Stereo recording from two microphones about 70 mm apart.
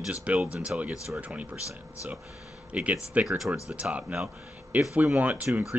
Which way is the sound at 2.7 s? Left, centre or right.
Centre.